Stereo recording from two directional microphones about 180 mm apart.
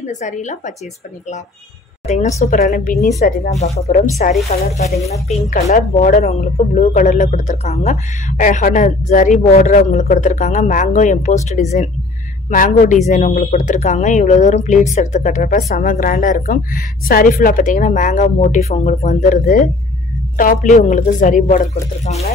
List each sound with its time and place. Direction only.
0.0 s a woman's voice: 40° left (ahead or behind)
2.0 s a woman's voice: 40° left (ahead or behind)
3.2 s a woman's voice: 40° left (ahead or behind)